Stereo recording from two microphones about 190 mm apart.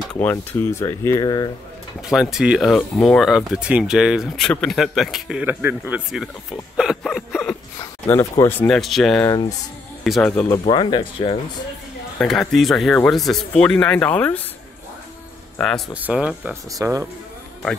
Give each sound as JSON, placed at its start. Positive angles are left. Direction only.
{"t": 0.0, "sound": "speech", "side_deg": 5}
{"t": 2.0, "sound": "speech", "side_deg": 0}
{"t": 6.8, "sound": "a sound", "side_deg": 0}
{"t": 7.8, "sound": "speech", "side_deg": 15}
{"t": 10.6, "sound": "speech", "side_deg": 25}
{"t": 12.2, "sound": "speech", "side_deg": 0}
{"t": 15.5, "sound": "speech", "side_deg": 5}
{"t": 16.7, "sound": "speech", "side_deg": -15}